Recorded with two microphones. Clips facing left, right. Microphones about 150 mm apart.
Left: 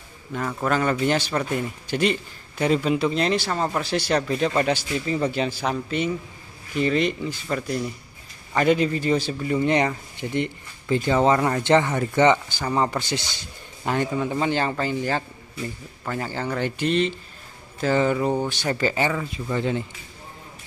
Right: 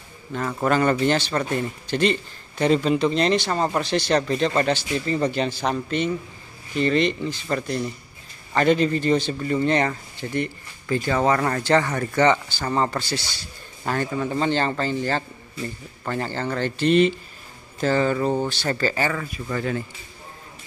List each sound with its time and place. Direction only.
0.3 s a man's voice: centre (ahead or behind)
1.1 s a man's voice: 10° left (ahead or behind)
17.9 s speech: 15° left (ahead or behind)